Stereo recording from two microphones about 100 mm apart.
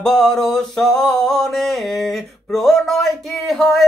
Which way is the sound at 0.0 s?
5° left (ahead or behind).